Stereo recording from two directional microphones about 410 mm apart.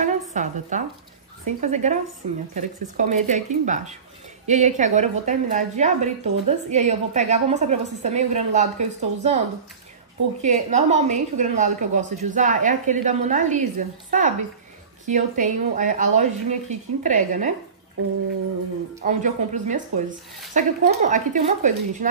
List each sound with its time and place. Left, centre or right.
0.0 s a sound: centre
1.6 s a woman's voice: centre
10.4 s a woman's voice: centre
18.9 s a woman's voice: centre